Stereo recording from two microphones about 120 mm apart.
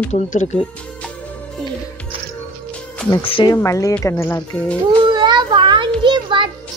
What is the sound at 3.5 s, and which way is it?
Speech, 25° left (ahead or behind).